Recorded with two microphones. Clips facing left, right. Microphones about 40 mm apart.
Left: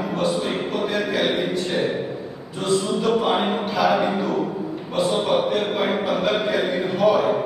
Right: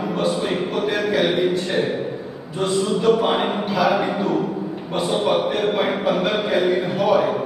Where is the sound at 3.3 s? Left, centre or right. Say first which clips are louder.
Even; centre.